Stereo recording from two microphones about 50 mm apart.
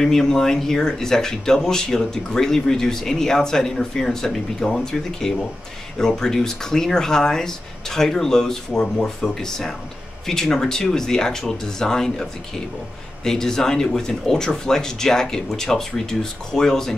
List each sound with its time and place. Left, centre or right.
0.0 s speech: centre